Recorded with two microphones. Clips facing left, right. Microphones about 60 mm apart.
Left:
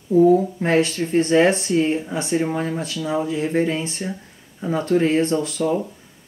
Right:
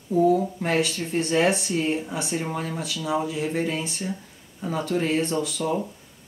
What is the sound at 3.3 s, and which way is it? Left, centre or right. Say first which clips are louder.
Speech: left 5 dB; left.